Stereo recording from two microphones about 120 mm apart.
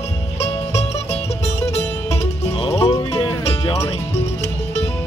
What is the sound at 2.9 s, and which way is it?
Music, 30° left (ahead or behind).